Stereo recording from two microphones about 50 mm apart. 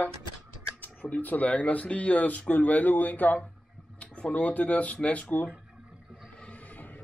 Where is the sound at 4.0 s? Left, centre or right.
Left.